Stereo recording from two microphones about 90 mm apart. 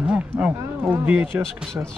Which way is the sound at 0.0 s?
15° right (ahead or behind).